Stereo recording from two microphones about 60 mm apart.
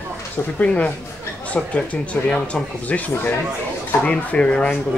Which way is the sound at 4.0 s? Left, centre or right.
Centre.